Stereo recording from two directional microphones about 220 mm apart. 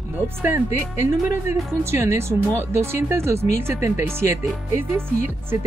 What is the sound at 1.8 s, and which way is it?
Speech, 10° right (ahead or behind).